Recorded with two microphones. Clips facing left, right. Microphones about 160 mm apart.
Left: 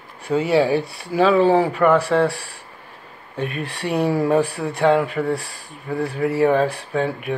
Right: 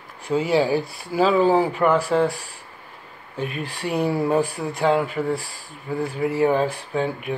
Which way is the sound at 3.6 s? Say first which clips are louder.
Left 2 dB; 65° left (ahead or behind).